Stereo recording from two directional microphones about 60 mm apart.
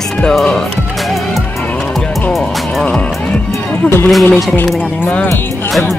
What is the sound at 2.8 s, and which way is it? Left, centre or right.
Music, centre.